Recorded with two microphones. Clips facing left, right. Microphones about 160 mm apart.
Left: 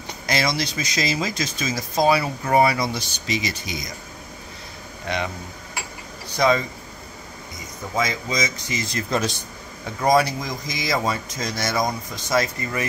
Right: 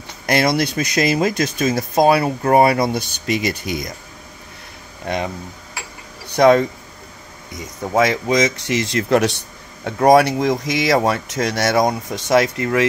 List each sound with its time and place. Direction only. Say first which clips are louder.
0.3 s speech: right 7 dB; 60° right (ahead or behind)
5.0 s speech: right 4 dB; 45° right (ahead or behind)
6.3 s speech: right 8 dB; 65° right (ahead or behind)